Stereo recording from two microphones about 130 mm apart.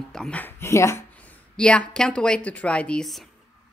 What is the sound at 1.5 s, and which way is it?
A woman's voice, 10° left (ahead or behind).